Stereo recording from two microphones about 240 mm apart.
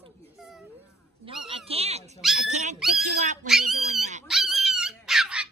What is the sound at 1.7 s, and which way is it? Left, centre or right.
Dog, right.